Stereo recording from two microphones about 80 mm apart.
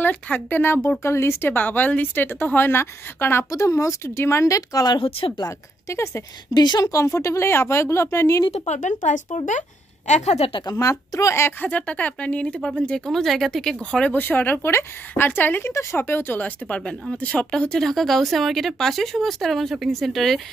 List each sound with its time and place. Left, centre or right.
0.0 s a woman's voice: left
3.4 s a woman's voice: left
5.4 s a woman's voice: left
6.5 s speech: left
6.9 s a woman's voice: left
10.7 s a woman's voice: left
11.6 s speech: centre
14.0 s a woman's voice: left; by 20.4 s centre